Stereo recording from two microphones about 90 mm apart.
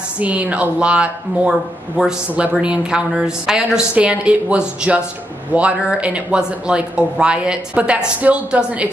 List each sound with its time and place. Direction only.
0.2 s speech: 15° right (ahead or behind)